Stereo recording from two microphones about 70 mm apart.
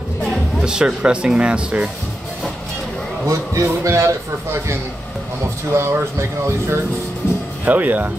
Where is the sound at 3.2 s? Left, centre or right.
Right.